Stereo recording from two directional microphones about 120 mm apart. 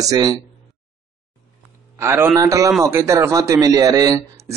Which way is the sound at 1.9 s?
20° right (ahead or behind).